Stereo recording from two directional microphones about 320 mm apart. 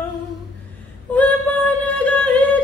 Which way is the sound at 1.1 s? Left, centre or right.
Centre.